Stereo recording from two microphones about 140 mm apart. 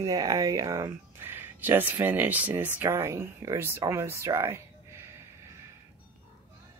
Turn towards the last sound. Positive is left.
turn(degrees=-20)  # may be behind; listen again after turning